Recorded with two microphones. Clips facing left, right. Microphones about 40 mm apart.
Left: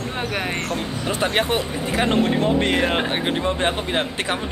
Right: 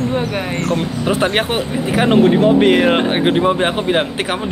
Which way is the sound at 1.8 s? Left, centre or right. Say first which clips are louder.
Right 8 dB; centre.